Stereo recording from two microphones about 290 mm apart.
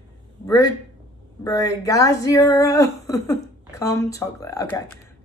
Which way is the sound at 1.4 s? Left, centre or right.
Centre.